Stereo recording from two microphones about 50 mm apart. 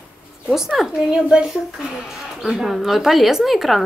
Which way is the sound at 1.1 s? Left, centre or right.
Centre.